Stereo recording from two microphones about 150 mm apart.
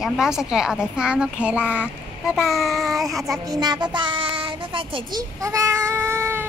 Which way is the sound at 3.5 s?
25° right (ahead or behind).